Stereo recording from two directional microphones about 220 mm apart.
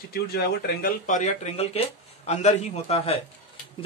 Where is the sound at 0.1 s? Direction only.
45° left (ahead or behind).